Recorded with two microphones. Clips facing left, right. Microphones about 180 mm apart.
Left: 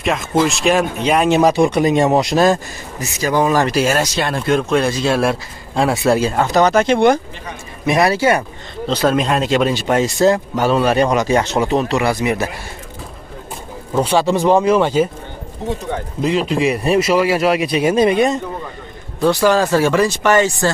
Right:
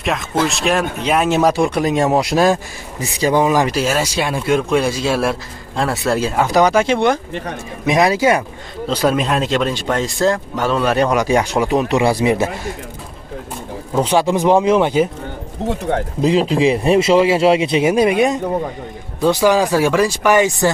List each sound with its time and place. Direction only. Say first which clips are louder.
0.0 s a man's voice: left 2 dB; centre (ahead or behind)
3.0 s speech: right 3 dB; 30° right (ahead or behind)
3.3 s speech: even; 15° right (ahead or behind)
3.7 s a man's voice: left 2 dB; centre (ahead or behind)
7.8 s a man's voice: even; 15° right (ahead or behind)
12.0 s speech: right 3 dB; 30° right (ahead or behind)
13.9 s speech: even; 15° right (ahead or behind)
16.2 s speech: right 2 dB; 30° right (ahead or behind)
17.9 s speech: even; 10° right (ahead or behind)